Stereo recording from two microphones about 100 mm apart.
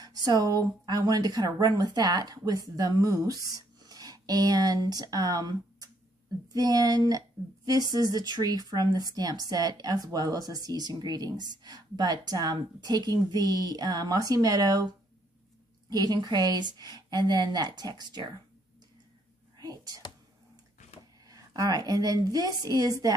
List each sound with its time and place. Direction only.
0.0 s speech: 40° right (ahead or behind)
15.9 s a woman's voice: 40° right (ahead or behind)
19.6 s whispering: 40° right (ahead or behind)
21.3 s speech: 35° right (ahead or behind)